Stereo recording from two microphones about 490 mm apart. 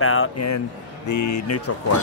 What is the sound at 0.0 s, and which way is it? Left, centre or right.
Speech, left.